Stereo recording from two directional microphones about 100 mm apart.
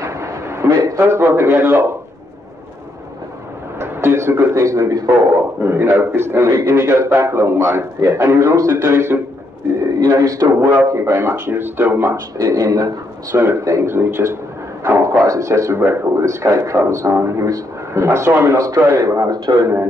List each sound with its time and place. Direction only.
0.0 s a man's voice: 30° right (ahead or behind)
3.8 s a man's voice: 25° right (ahead or behind)
9.9 s a man's voice: 35° right (ahead or behind); by 12.2 s 20° right (ahead or behind)
12.4 s a man's voice: 30° right (ahead or behind)